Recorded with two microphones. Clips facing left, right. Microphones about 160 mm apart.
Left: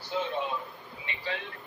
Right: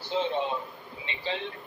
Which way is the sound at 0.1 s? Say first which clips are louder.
Right 3 dB; 25° right (ahead or behind).